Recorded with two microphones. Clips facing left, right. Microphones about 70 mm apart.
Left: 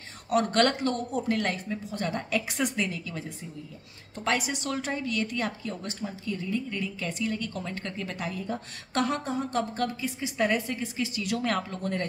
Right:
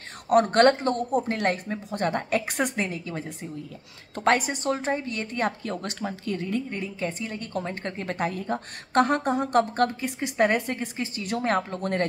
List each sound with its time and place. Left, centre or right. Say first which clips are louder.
0.3 s a woman's voice: right 6 dB; right
4.6 s a woman's voice: right 4 dB; right
5.6 s speech: right 4 dB; right
6.7 s a woman's voice: right 2 dB; right
11.8 s speech: right 5 dB; right